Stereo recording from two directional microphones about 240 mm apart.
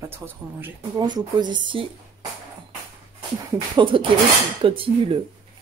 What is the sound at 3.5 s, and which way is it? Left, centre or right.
Speech, right.